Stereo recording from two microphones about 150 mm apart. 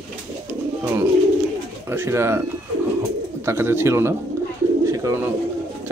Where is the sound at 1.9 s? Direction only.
15° right (ahead or behind).